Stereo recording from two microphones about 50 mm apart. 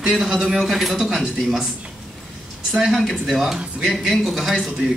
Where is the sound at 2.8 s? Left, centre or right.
Centre.